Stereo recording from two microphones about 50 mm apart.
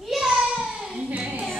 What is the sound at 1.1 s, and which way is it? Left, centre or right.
Music, right.